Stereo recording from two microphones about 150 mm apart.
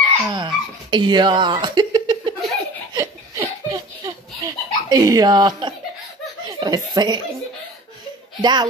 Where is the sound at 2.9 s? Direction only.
25° right (ahead or behind).